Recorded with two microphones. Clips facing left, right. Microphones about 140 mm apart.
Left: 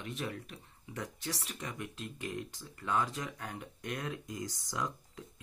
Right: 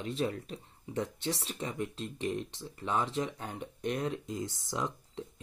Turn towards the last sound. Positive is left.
turn(degrees=-25)  # may be behind; listen again after turning